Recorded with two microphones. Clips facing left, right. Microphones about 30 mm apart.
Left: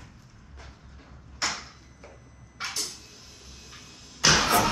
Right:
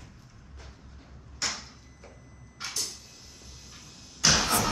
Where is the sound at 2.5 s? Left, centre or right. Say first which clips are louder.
Left 2 dB; centre.